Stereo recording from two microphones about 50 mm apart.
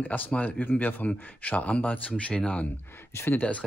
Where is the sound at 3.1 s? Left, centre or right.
Left.